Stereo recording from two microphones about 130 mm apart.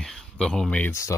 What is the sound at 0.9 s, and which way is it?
Speech, 20° left (ahead or behind).